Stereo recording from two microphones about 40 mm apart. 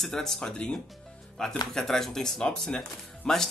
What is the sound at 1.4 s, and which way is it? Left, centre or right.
Speech, centre.